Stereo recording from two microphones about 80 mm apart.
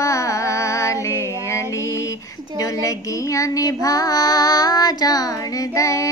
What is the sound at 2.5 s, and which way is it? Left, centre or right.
Child singing, left.